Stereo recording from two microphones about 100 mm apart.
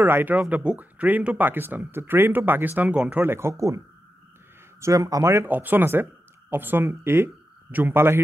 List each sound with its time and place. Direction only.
0.0 s speech: 20° right (ahead or behind)
5.5 s speech: 20° right (ahead or behind)